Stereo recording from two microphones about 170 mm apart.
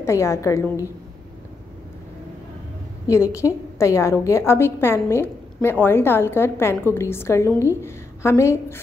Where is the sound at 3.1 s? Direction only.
15° left (ahead or behind).